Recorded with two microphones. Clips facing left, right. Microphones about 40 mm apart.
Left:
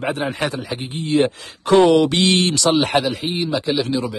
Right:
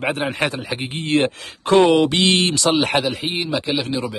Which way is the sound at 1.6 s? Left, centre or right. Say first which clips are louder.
Left 1 dB; centre.